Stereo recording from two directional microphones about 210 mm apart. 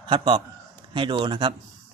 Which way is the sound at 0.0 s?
25° right (ahead or behind).